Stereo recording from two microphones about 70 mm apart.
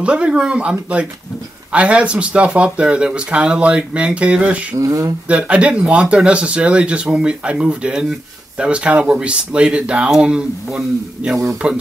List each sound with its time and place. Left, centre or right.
0.0 s speech: centre
4.7 s speech: right
5.3 s speech: centre